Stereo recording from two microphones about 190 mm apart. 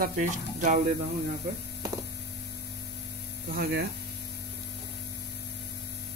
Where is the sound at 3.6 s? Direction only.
55° right (ahead or behind).